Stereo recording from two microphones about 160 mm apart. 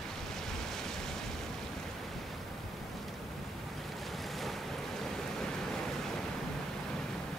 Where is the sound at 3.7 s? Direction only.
Centre (ahead or behind).